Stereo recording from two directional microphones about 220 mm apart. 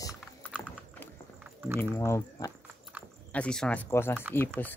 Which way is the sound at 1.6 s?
10° right (ahead or behind).